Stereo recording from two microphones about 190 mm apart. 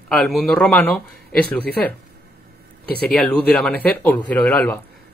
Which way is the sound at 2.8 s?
55° left (ahead or behind).